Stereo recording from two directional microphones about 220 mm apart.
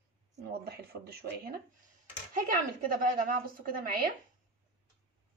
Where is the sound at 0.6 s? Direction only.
45° right (ahead or behind).